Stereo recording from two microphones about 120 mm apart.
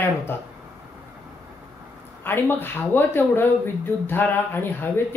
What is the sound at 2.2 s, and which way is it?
Speech, 20° left (ahead or behind).